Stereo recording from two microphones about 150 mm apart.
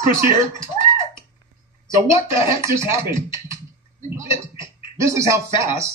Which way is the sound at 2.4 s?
20° right (ahead or behind).